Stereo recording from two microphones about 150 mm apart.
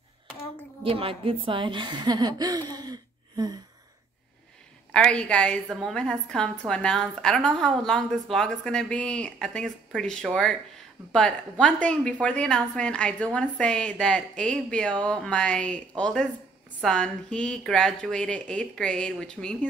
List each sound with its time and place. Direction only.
0.8 s a woman's voice: 40° right (ahead or behind)
4.9 s a woman's voice: 5° left (ahead or behind)